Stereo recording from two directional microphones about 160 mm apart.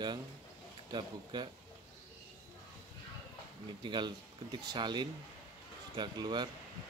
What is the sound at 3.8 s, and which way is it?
Speech, 30° right (ahead or behind).